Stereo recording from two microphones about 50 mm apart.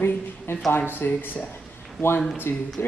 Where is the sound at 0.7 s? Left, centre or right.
Left.